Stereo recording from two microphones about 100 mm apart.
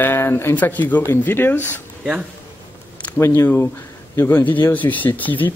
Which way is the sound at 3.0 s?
20° left (ahead or behind).